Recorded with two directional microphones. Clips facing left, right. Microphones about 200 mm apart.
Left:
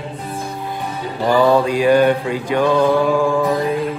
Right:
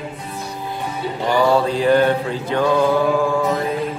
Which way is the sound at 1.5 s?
15° left (ahead or behind).